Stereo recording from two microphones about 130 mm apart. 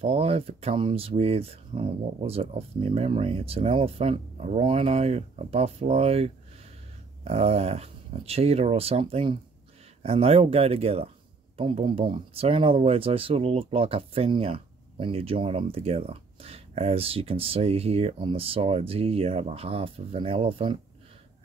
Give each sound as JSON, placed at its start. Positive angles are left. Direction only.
{"t": 0.0, "sound": "speech", "side_deg": -50}